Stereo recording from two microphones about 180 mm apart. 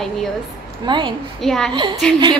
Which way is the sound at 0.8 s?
25° right (ahead or behind).